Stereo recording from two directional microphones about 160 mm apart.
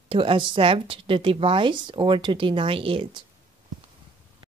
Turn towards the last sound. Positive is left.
turn(degrees=-35)  # may be behind; listen again after turning